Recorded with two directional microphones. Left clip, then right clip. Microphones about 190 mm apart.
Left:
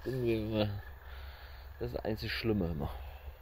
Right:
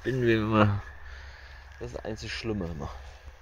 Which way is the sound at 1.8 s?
15° left (ahead or behind).